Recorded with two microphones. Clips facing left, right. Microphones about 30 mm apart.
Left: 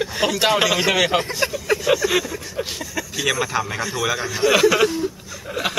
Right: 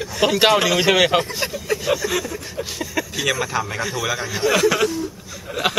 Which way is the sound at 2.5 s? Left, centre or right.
Centre.